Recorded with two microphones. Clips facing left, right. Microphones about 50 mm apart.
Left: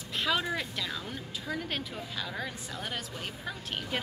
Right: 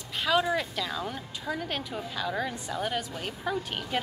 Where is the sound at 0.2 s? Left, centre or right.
Centre.